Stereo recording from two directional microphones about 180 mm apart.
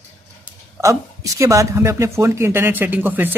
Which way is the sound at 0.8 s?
15° right (ahead or behind).